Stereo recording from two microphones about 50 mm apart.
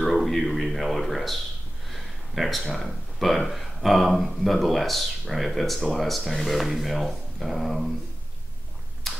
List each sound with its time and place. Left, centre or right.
0.0 s a man's voice: centre
9.1 s tick-tock: centre